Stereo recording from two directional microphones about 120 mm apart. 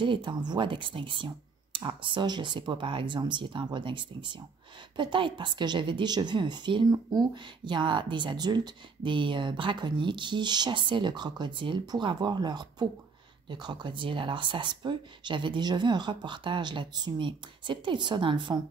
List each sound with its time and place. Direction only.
0.0 s a woman's voice: 40° right (ahead or behind)